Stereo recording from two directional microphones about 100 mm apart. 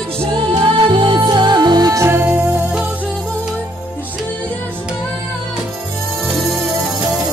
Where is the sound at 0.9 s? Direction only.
55° right (ahead or behind); by 2.6 s 20° right (ahead or behind).